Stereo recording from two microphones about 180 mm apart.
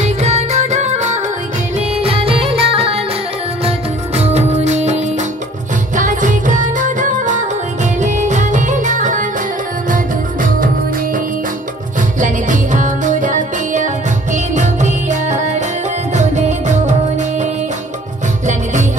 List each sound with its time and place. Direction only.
0.0 s music: 40° right (ahead or behind)
12.2 s music: 45° right (ahead or behind)